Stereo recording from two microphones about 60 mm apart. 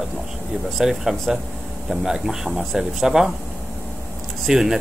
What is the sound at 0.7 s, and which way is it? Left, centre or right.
A man's voice, centre.